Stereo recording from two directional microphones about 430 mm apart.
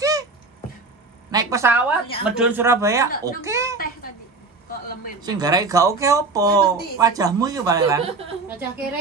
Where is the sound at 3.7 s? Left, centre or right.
Centre.